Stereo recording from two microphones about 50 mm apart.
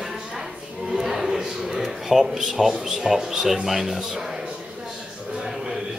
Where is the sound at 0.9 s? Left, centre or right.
Centre.